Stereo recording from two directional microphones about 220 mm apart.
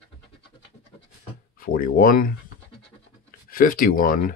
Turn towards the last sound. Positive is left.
turn(degrees=40)  # may be behind; listen again after turning